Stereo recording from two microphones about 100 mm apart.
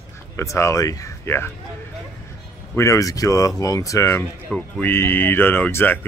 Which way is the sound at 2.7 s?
30° left (ahead or behind).